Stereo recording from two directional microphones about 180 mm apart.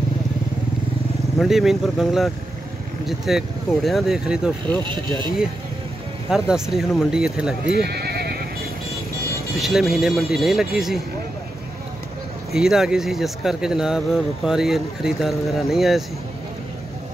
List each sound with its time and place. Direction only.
1.4 s speech: centre (ahead or behind)
6.3 s speech: 5° right (ahead or behind)
7.7 s horse: 65° right (ahead or behind)
9.6 s speech: centre (ahead or behind)
12.5 s speech: centre (ahead or behind)